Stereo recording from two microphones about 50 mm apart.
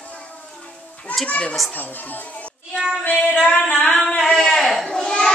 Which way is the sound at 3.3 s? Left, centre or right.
Left.